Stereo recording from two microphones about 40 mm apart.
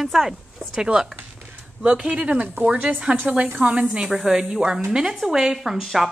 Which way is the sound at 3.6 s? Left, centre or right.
Right.